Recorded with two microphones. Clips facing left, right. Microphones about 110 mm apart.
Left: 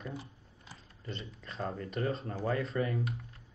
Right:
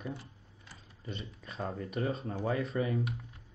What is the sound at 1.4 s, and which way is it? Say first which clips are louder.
Speech: even; 10° right (ahead or behind).